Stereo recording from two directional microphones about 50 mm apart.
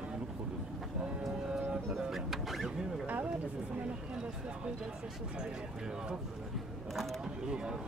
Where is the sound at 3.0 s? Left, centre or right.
Right.